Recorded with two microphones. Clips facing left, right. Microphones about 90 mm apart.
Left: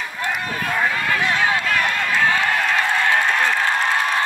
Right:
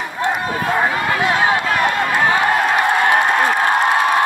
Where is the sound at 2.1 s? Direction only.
20° right (ahead or behind).